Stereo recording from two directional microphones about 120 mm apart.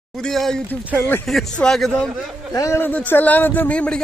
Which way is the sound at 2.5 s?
25° left (ahead or behind).